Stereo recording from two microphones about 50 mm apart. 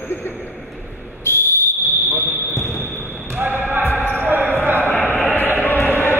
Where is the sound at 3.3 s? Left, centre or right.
Right.